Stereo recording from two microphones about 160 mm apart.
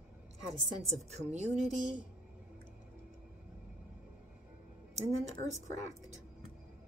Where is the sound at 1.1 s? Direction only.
45° right (ahead or behind).